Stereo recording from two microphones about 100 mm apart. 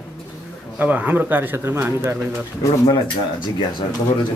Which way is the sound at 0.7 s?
15° right (ahead or behind).